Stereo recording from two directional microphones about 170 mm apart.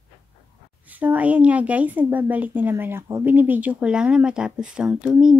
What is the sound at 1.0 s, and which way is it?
Speech, 10° right (ahead or behind).